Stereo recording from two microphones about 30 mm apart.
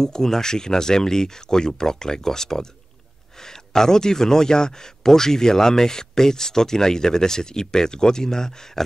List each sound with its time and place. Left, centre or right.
0.0 s speech: centre